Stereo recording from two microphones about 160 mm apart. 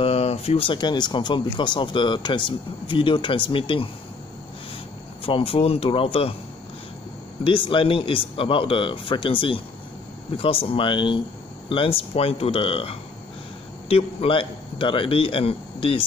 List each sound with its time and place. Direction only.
0.0 s speech: 40° left (ahead or behind)
5.2 s speech: 35° left (ahead or behind)
7.4 s speech: 30° left (ahead or behind)